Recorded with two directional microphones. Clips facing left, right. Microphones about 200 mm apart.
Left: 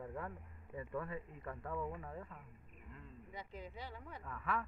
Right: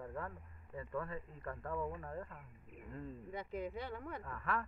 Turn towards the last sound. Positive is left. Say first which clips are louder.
# right 1 dB
turn(degrees=0)  # may be behind; listen again after turning